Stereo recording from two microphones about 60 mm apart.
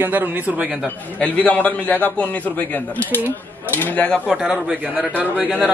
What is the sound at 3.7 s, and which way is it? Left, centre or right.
Speech, left.